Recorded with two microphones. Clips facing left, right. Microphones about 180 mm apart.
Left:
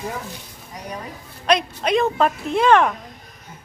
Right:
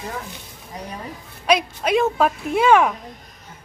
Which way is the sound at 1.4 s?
5° right (ahead or behind).